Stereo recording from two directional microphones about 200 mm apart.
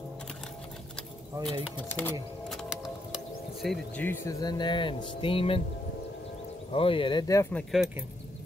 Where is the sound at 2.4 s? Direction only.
Centre (ahead or behind); by 5.6 s 25° left (ahead or behind).